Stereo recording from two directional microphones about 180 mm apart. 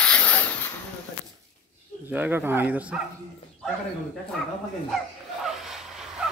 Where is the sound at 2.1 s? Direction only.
10° right (ahead or behind).